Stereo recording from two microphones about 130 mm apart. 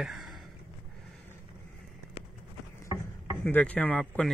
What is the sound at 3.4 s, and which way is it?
Speech, 10° left (ahead or behind).